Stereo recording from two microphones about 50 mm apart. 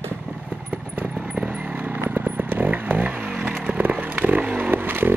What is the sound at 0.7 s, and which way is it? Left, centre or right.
Vehicle, right.